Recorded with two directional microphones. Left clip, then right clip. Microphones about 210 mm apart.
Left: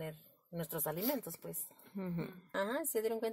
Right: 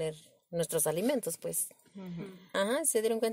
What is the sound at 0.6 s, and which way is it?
Speech, 25° right (ahead or behind).